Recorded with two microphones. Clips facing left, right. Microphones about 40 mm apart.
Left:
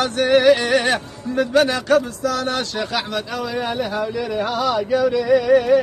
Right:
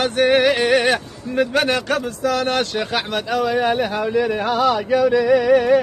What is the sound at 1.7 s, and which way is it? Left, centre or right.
A man's voice, right.